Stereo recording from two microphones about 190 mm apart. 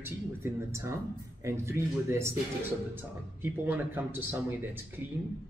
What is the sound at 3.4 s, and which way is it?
Speech, 10° right (ahead or behind).